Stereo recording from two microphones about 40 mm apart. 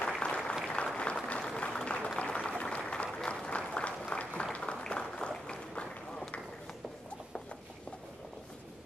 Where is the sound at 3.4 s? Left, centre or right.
Left.